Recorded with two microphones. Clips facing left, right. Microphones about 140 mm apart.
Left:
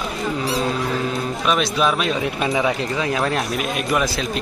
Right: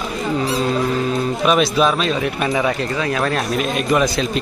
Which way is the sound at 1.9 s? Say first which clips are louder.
Right 2 dB; 15° left (ahead or behind).